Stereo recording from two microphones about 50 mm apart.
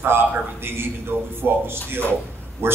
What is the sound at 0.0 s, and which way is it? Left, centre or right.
Speech, right.